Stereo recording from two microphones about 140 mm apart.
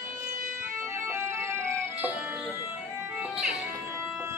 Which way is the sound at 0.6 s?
20° right (ahead or behind).